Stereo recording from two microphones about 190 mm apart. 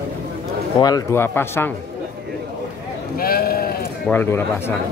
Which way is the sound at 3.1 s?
50° left (ahead or behind).